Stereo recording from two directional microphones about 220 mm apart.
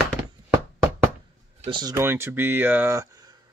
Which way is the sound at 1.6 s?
20° right (ahead or behind).